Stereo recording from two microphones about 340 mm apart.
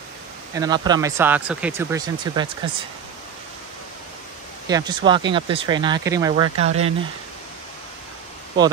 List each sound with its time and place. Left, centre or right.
0.6 s speech: centre
4.6 s speech: centre